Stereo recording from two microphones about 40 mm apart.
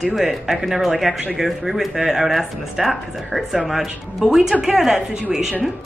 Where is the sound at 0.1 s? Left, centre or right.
Centre.